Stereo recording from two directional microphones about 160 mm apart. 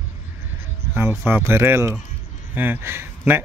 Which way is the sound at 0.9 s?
15° right (ahead or behind).